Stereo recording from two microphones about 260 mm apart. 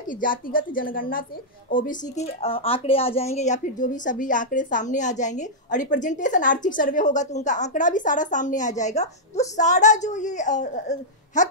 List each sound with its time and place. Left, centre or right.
0.1 s a woman's voice: left